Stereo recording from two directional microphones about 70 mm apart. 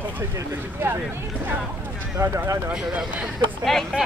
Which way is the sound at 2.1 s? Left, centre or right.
Right.